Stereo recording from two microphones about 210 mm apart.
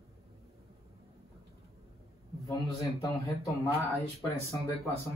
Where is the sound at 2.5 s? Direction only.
15° left (ahead or behind).